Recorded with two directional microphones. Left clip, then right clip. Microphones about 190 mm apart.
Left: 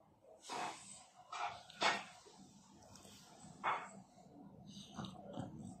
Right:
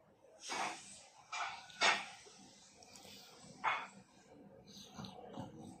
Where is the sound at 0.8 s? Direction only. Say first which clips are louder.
Right 1 dB; 15° left (ahead or behind).